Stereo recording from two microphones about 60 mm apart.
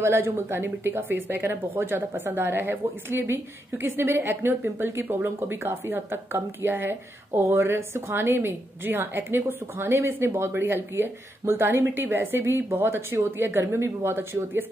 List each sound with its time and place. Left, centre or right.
0.0 s a woman's voice: right
7.3 s a woman's voice: right